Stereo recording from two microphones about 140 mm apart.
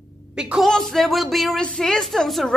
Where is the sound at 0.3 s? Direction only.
5° right (ahead or behind).